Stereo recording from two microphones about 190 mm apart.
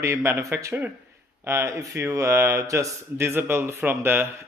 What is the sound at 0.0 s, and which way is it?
Speech, 15° right (ahead or behind).